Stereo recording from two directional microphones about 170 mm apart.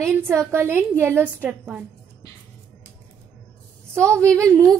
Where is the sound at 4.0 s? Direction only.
15° right (ahead or behind).